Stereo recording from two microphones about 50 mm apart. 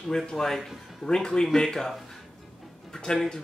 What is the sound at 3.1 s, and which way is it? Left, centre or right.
Speech, centre.